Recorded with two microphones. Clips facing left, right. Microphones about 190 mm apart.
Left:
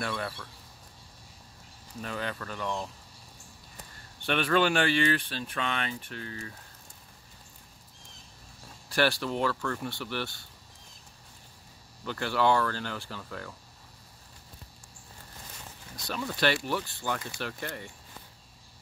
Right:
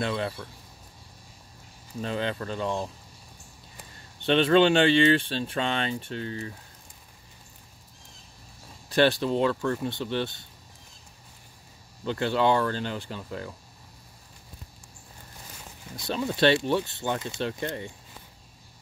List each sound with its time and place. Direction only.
0.0 s speech: 25° right (ahead or behind)
2.0 s speech: 25° right (ahead or behind)
4.3 s speech: 25° right (ahead or behind)
8.8 s speech: 20° right (ahead or behind)
12.0 s speech: 20° right (ahead or behind)
16.1 s speech: 25° right (ahead or behind)